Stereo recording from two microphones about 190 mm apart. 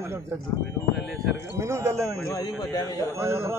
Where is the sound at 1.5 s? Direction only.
15° right (ahead or behind).